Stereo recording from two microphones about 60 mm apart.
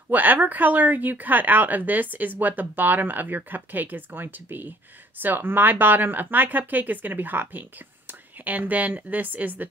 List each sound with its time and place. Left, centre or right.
0.1 s speech: right